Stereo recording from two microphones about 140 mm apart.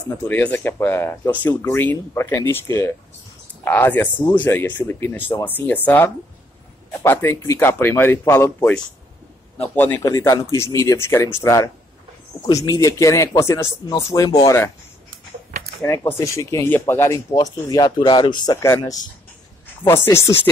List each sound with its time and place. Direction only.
0.3 s speech: 10° left (ahead or behind)
10.0 s speech: 25° left (ahead or behind)
15.8 s speech: 15° left (ahead or behind)
19.9 s speech: 20° left (ahead or behind)